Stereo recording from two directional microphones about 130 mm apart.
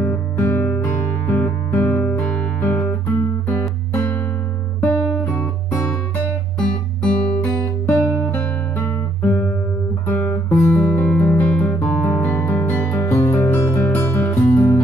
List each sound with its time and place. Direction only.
0.0 s music: 15° left (ahead or behind)
4.7 s music: 20° left (ahead or behind)
7.0 s guitar: 5° left (ahead or behind)